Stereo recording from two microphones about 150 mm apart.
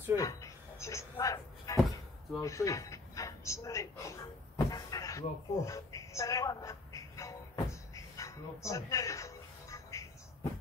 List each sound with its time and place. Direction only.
0.2 s a sound: 20° left (ahead or behind)
1.8 s drawer open or close: centre (ahead or behind)
2.4 s television: 20° left (ahead or behind)
5.7 s music: 20° left (ahead or behind)